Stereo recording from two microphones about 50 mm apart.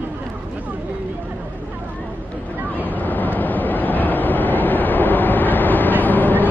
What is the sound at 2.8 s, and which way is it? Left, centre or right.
Vehicle, left.